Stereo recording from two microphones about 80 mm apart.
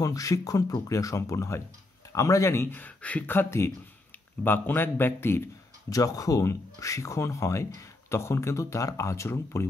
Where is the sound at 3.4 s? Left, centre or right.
Left.